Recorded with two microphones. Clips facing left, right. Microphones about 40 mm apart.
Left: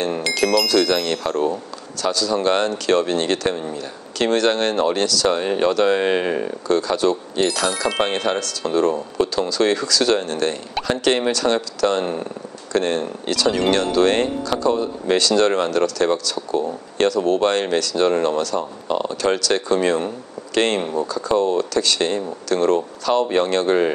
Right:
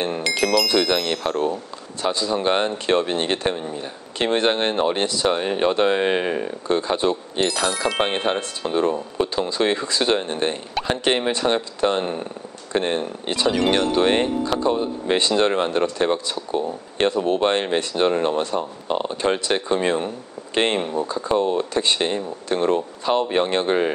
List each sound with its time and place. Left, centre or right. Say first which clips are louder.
0.7 s speech: left 2 dB; right
2.0 s speech: left 2 dB; right
6.2 s speech: left 2 dB; centre
6.7 s speech: left 2 dB; right